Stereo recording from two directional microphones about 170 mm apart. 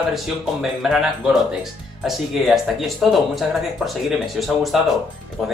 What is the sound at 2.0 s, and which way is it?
Speech, centre (ahead or behind).